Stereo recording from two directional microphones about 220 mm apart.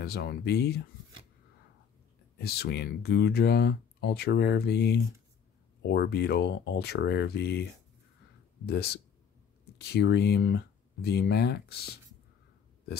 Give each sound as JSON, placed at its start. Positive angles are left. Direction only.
{"t": 0.0, "sound": "speech", "side_deg": 45}
{"t": 2.3, "sound": "speech", "side_deg": 45}
{"t": 8.6, "sound": "speech", "side_deg": 45}